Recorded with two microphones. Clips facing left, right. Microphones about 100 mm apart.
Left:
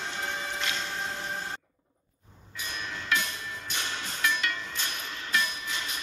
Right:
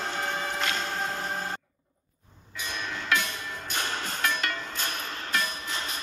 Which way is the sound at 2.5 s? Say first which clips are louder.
Right 3 dB; 85° right.